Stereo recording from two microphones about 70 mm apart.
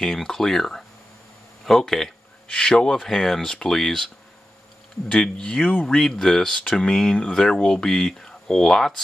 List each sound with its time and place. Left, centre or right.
0.0 s speech: centre
5.0 s speech: centre
5.9 s speech: centre